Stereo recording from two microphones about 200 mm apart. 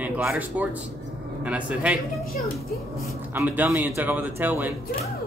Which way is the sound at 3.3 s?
10° right (ahead or behind).